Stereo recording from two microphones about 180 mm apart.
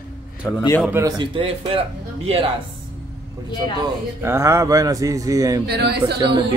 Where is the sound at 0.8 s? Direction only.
15° right (ahead or behind).